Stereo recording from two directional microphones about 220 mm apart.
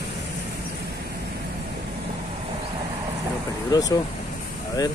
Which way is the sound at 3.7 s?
15° left (ahead or behind).